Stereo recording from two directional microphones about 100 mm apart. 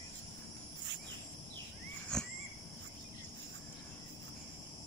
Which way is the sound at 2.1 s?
5° left (ahead or behind).